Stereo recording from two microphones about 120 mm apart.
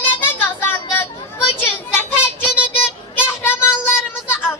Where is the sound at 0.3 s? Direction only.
15° left (ahead or behind).